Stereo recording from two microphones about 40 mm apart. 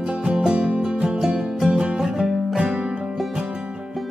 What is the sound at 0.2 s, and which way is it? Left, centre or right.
Music, centre.